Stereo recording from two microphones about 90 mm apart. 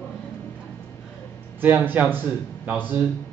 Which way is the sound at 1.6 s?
20° right (ahead or behind).